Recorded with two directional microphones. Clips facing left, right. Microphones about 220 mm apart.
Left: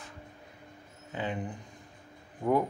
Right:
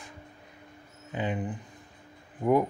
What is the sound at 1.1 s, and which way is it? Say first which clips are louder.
Speech: right 3 dB; 15° right (ahead or behind).